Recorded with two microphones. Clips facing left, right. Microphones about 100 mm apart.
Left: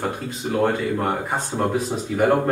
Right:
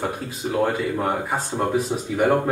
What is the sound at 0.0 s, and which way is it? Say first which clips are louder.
Speech: even; centre (ahead or behind).